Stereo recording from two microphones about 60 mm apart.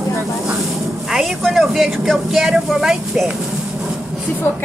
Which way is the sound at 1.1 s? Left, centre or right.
Centre.